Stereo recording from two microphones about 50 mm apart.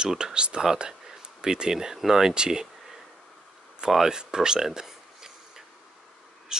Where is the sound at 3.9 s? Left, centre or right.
Centre.